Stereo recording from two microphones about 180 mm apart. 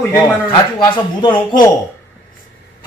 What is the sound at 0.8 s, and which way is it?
Speech, 25° left (ahead or behind).